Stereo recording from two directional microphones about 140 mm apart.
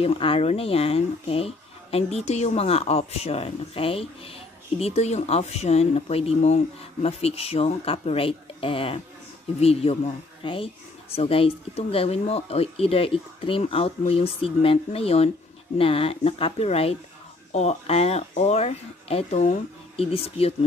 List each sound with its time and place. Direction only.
0.0 s speech: 40° left (ahead or behind)